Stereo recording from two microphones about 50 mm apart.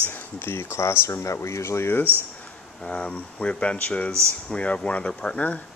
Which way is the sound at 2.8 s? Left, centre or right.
Left.